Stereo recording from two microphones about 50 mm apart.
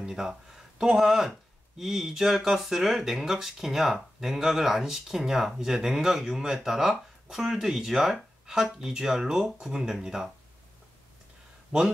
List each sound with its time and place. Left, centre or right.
0.0 s speech: centre
11.7 s speech: centre